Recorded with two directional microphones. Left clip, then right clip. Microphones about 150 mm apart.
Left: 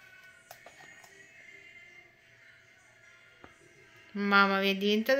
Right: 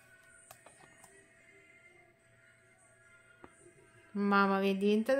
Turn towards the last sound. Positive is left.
turn(degrees=-35)  # may be behind; listen again after turning